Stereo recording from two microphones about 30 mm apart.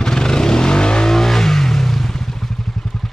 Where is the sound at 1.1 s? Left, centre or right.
Centre.